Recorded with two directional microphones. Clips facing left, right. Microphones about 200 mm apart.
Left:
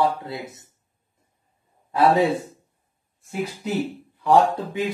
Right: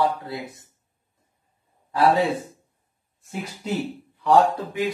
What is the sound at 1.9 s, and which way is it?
Speech, 25° left (ahead or behind).